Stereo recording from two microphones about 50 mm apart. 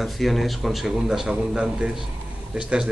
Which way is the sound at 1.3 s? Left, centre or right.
Centre.